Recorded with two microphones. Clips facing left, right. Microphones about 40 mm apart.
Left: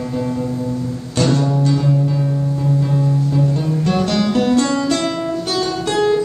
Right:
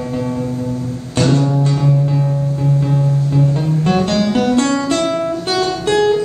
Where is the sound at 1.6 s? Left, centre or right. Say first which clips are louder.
Right 1 dB; right.